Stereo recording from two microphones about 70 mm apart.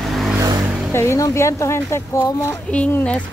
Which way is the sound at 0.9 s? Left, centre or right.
Left.